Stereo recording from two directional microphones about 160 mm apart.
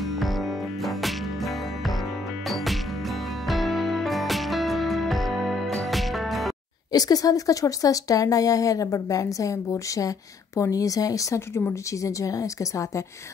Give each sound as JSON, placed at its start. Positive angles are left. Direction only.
{"t": 0.0, "sound": "music", "side_deg": 0}
{"t": 6.9, "sound": "a woman's voice", "side_deg": 25}